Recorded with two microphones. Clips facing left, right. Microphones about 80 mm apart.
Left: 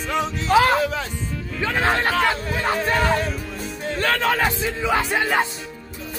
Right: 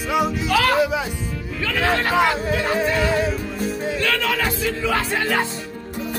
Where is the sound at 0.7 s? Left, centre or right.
Centre.